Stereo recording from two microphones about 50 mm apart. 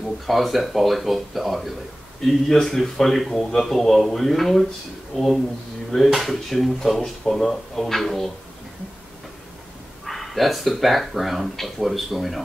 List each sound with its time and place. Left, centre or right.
0.3 s speech: centre
10.0 s speech: centre